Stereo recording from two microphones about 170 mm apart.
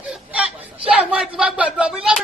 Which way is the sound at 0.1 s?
5° right (ahead or behind).